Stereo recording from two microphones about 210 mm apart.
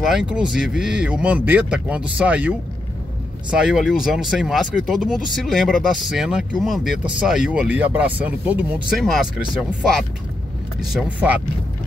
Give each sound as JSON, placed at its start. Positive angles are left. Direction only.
{"t": 0.1, "sound": "speech", "side_deg": -5}